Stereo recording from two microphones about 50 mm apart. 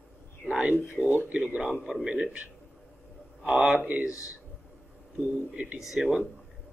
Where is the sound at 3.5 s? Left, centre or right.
Right.